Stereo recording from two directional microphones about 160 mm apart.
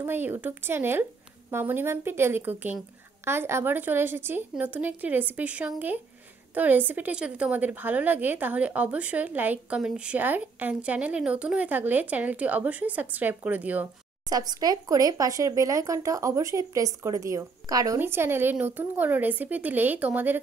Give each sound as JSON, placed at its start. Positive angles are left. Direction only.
{"t": 0.0, "sound": "a woman's voice", "side_deg": -15}
{"t": 14.3, "sound": "speech", "side_deg": -25}